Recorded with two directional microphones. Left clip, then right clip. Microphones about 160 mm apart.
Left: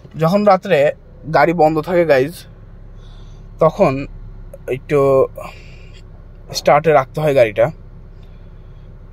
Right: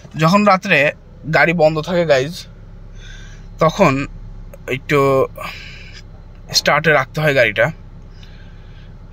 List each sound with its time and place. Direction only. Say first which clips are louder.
0.2 s speech: even; 15° left (ahead or behind)
1.6 s speech: left 1 dB; 25° left (ahead or behind)
3.5 s speech: even; 5° left (ahead or behind)